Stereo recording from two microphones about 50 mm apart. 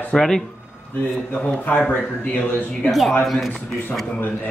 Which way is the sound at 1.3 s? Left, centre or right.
Left.